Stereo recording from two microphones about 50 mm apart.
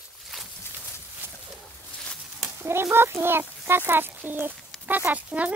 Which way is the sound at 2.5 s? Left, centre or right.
Right.